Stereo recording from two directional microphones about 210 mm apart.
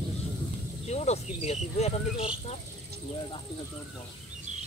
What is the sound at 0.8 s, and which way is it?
Speech, 30° left (ahead or behind).